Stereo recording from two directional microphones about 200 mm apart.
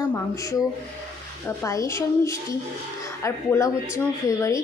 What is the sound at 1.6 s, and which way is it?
A woman's voice, 15° left (ahead or behind).